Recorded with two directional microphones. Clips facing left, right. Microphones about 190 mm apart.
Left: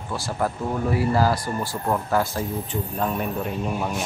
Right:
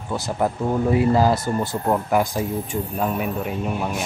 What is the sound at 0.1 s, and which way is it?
Speech, 20° right (ahead or behind).